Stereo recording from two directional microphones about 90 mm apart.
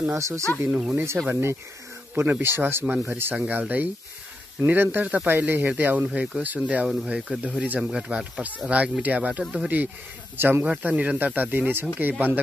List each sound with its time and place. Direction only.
0.1 s speech: 35° right (ahead or behind)
0.6 s speech: 20° right (ahead or behind)
6.1 s speech: 10° right (ahead or behind)